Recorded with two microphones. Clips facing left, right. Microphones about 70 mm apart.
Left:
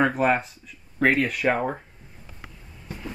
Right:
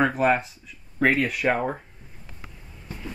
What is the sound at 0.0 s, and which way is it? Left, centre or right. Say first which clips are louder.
Speech: even; centre.